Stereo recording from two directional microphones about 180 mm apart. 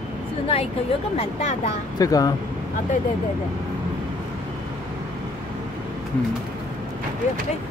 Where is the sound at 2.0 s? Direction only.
20° left (ahead or behind).